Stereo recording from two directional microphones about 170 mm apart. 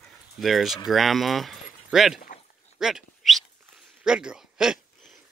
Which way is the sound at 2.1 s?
50° left (ahead or behind).